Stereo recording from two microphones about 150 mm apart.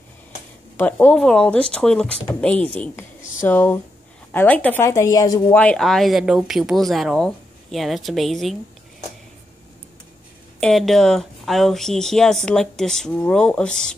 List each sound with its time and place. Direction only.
0.7 s speech: 10° left (ahead or behind)
5.5 s speech: 10° left (ahead or behind)
10.6 s speech: centre (ahead or behind)